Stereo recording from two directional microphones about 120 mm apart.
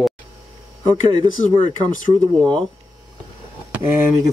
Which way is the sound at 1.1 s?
40° right (ahead or behind).